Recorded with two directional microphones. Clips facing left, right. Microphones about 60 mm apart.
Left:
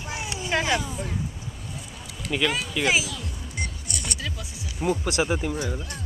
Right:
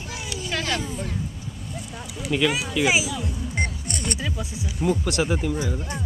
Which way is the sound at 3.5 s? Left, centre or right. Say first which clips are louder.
Right 4 dB; right.